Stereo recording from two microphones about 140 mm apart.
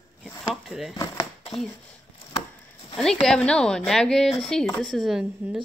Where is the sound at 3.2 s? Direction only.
5° left (ahead or behind).